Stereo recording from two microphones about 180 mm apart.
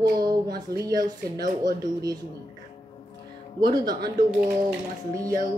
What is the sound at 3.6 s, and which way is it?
Speech, 20° right (ahead or behind).